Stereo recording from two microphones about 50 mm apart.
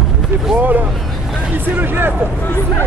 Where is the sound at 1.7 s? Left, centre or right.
Right.